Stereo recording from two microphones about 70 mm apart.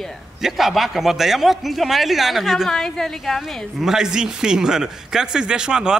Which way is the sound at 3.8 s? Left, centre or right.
Centre.